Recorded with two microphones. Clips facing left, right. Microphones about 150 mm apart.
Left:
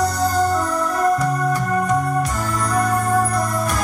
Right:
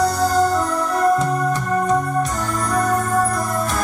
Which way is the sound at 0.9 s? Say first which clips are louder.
Right 2 dB; 30° right (ahead or behind).